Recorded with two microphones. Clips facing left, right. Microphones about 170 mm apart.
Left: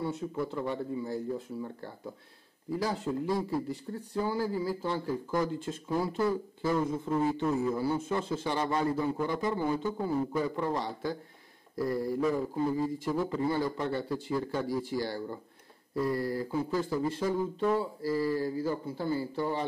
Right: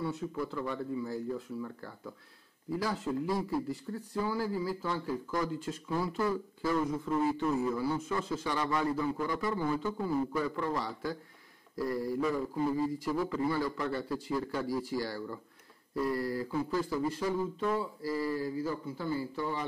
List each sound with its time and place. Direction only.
0.0 s a man's voice: 25° left (ahead or behind)
13.3 s a man's voice: 25° left (ahead or behind)